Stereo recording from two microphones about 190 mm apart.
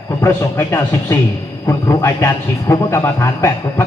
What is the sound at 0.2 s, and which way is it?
A man's voice, 15° left (ahead or behind).